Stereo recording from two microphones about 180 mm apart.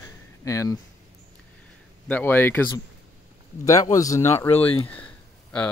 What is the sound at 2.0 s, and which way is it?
Speech, 10° left (ahead or behind).